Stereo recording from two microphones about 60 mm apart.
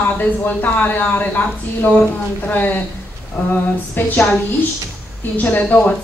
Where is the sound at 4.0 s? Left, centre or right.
Left.